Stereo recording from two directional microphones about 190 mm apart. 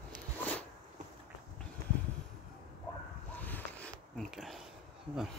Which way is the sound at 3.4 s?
10° left (ahead or behind).